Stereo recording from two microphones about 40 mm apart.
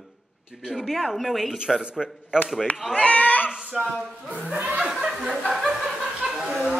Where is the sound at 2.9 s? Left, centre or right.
Left.